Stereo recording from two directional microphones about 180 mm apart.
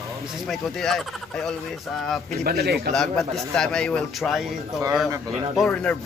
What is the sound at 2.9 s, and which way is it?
A man's voice, 5° left (ahead or behind).